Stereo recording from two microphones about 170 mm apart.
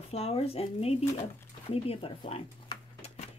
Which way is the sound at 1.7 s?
35° left (ahead or behind).